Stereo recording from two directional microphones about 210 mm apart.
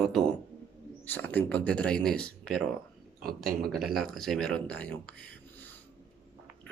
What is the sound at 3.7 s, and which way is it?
Speech, centre (ahead or behind).